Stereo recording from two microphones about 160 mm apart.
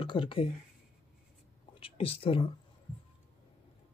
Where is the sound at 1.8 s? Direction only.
35° left (ahead or behind).